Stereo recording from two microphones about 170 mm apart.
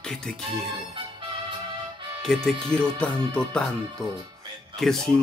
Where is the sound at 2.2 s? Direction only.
Centre (ahead or behind).